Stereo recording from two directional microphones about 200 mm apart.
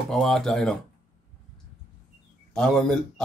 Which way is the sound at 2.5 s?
5° left (ahead or behind).